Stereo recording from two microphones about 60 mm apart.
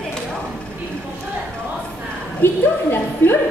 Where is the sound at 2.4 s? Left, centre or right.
Left.